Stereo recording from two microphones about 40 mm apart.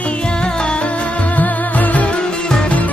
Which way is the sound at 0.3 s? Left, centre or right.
Left.